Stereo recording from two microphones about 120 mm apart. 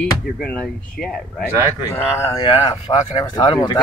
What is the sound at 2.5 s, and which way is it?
Speech, 45° left (ahead or behind).